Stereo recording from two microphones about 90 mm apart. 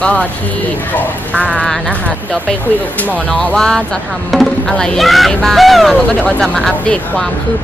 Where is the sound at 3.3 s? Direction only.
10° left (ahead or behind).